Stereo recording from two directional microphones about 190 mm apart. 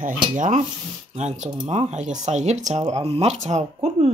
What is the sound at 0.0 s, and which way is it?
Stir, 45° right (ahead or behind).